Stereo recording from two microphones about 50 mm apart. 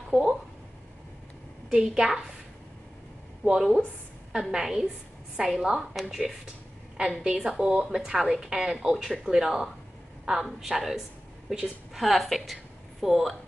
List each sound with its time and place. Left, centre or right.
0.1 s speech: centre
1.7 s speech: centre
3.5 s a woman's voice: centre